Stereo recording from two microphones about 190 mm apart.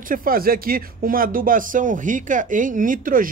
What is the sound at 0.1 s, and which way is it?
Speech, 50° right (ahead or behind).